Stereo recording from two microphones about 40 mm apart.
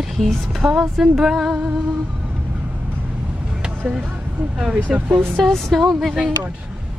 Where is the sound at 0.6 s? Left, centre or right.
Centre.